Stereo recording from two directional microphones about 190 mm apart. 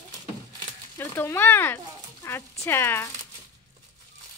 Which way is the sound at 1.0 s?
10° left (ahead or behind).